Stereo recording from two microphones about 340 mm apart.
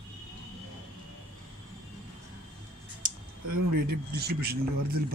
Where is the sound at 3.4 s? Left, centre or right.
Right.